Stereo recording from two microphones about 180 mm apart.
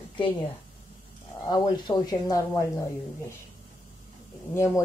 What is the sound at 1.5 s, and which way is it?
A woman's voice, 20° left (ahead or behind).